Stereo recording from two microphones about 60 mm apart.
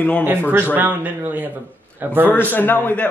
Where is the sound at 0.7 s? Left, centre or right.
Right.